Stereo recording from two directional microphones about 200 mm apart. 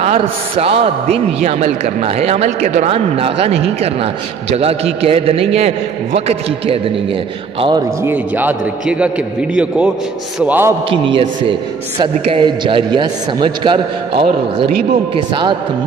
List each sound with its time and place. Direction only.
0.0 s a man's voice: 30° right (ahead or behind)
8.0 s a man's voice: 10° right (ahead or behind)
10.9 s a man's voice: 25° right (ahead or behind)